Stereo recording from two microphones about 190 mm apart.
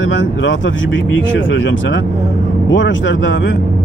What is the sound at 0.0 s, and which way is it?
Speech, 80° left.